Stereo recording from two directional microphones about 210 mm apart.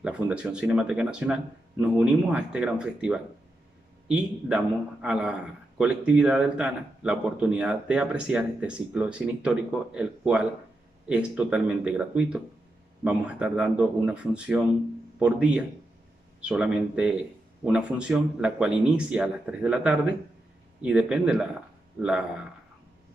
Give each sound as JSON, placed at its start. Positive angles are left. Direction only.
{"t": 0.0, "sound": "speech", "side_deg": -5}